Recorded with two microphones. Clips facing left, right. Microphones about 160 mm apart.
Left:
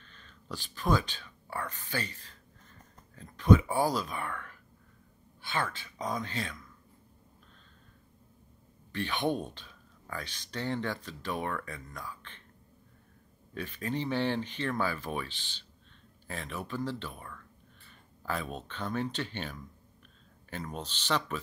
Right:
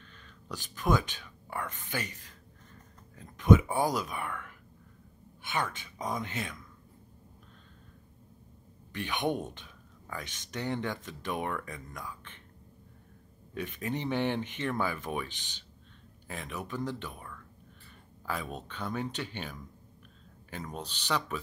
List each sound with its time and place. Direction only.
0.1 s speech: 10° right (ahead or behind)
5.4 s speech: 20° right (ahead or behind)
8.9 s speech: 15° right (ahead or behind)
13.6 s speech: 15° right (ahead or behind)